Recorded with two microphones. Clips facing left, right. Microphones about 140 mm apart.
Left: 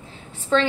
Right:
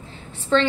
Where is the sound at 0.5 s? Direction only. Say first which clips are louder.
Right 1 dB; 5° left (ahead or behind).